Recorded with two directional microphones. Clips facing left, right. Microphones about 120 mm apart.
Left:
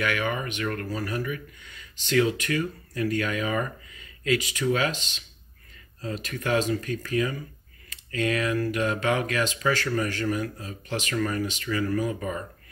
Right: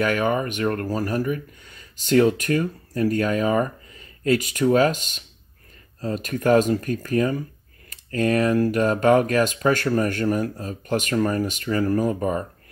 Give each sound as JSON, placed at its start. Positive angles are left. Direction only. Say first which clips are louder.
{"t": 0.0, "sound": "speech", "louder": "right 6 dB", "side_deg": -40}